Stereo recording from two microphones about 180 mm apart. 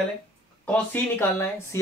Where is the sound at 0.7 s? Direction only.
10° left (ahead or behind).